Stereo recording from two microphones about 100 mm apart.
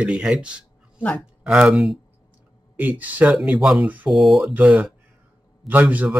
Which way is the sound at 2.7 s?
15° right (ahead or behind).